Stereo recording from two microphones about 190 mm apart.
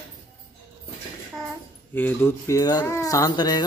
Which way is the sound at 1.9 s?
10° left (ahead or behind).